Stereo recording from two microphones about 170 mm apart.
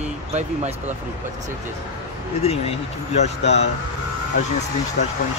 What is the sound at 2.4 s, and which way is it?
A man's voice, 40° left (ahead or behind).